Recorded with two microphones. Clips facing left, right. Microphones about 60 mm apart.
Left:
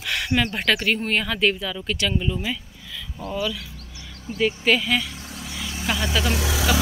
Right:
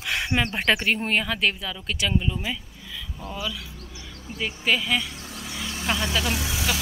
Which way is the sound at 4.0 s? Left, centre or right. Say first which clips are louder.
Left 6 dB; centre.